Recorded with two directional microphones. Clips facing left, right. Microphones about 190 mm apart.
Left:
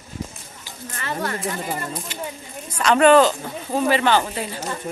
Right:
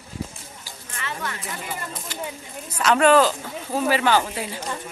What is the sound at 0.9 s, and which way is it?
Speech, 40° left (ahead or behind).